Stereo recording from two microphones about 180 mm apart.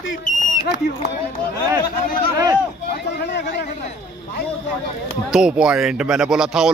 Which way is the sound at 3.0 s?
70° left (ahead or behind).